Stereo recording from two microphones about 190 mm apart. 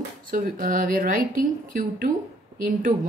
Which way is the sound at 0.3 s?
45° right (ahead or behind).